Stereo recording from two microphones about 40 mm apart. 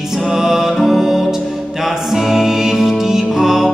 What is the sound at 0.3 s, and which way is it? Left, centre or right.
Music, centre.